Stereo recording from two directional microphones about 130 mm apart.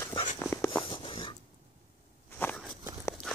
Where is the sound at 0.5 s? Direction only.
20° left (ahead or behind).